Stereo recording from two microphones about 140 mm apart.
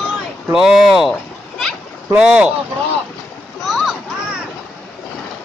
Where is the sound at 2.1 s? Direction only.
5° right (ahead or behind).